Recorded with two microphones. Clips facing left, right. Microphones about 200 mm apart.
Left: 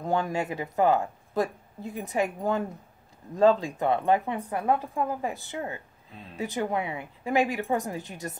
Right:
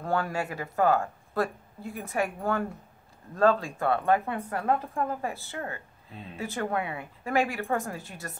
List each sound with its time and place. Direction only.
0.0 s a woman's voice: 20° left (ahead or behind)